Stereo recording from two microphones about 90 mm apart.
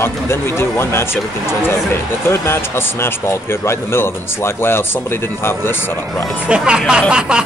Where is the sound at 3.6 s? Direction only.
30° left (ahead or behind).